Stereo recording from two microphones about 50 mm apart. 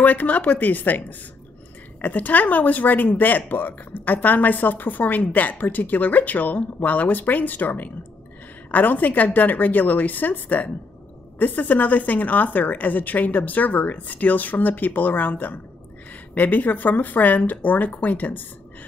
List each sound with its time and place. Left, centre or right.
0.0 s speech: left